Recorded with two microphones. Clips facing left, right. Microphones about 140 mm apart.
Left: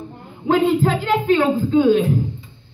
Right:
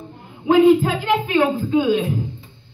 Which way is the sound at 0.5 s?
10° right (ahead or behind).